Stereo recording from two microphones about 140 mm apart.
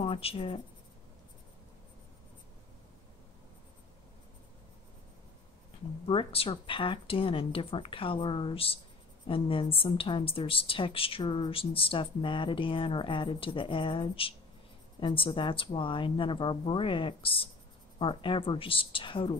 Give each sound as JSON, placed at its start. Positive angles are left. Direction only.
{"t": 0.0, "sound": "speech", "side_deg": 45}
{"t": 6.0, "sound": "a woman's voice", "side_deg": 40}